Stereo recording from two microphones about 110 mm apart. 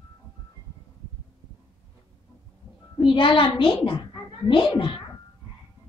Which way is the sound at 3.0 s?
50° left (ahead or behind).